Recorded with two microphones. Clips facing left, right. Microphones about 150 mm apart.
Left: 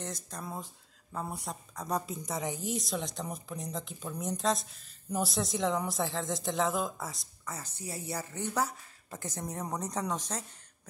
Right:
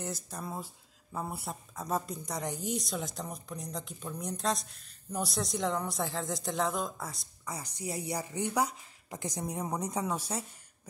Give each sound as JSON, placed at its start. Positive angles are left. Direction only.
{"t": 0.0, "sound": "a woman's voice", "side_deg": -10}
{"t": 7.4, "sound": "a woman's voice", "side_deg": -15}